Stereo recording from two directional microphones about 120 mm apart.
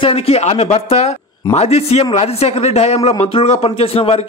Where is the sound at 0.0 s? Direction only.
55° left (ahead or behind).